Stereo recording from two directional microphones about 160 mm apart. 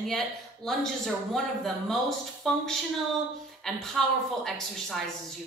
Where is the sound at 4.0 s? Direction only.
Centre (ahead or behind).